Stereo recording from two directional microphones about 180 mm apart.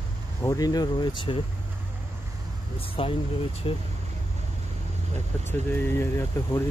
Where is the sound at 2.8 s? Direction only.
30° left (ahead or behind).